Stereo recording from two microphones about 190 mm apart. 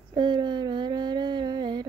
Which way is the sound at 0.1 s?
25° right (ahead or behind).